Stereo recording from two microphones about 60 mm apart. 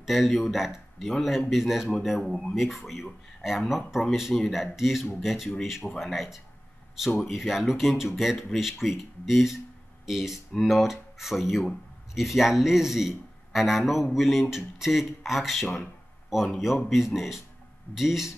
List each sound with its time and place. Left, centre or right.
0.0 s a man's voice: centre